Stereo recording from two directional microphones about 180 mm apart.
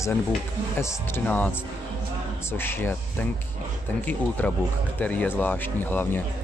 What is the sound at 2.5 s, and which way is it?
Speech, 10° left (ahead or behind).